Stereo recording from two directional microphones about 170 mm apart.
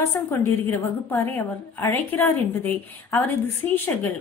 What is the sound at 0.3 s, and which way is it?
A woman's voice, 15° left (ahead or behind).